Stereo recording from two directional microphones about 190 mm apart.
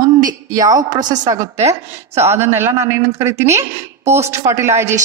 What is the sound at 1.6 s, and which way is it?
Speech, 35° right (ahead or behind).